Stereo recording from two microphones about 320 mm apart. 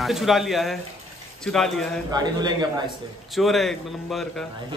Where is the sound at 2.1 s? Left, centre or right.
Centre.